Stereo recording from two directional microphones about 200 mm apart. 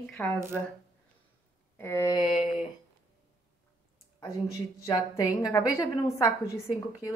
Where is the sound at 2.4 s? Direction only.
35° left (ahead or behind).